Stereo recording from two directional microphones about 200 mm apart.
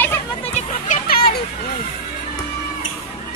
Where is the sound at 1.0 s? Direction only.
50° left (ahead or behind).